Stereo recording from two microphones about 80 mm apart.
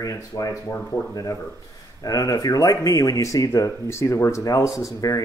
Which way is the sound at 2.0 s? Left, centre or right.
Left.